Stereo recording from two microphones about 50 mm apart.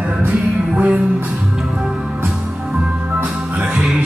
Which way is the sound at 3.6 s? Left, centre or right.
Centre.